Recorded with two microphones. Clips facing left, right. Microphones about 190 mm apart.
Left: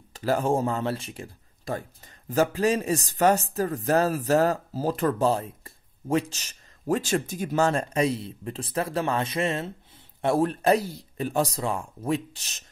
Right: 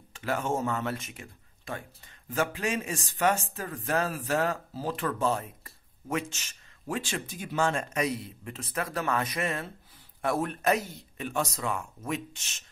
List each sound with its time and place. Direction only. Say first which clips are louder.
0.1 s speech: left 6 dB; 35° left (ahead or behind)